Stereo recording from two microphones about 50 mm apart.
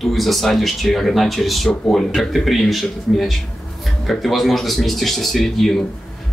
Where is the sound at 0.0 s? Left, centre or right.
Centre.